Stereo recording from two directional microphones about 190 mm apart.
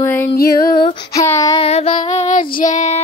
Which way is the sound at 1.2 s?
15° left (ahead or behind).